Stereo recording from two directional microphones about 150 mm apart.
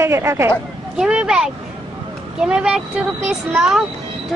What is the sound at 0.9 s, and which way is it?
Speech, 5° right (ahead or behind).